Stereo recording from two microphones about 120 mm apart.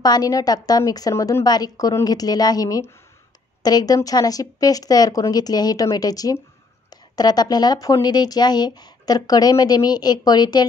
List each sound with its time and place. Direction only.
0.0 s speech: 35° left (ahead or behind)